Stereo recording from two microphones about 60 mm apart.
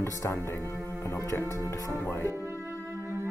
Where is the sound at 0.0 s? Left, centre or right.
Left.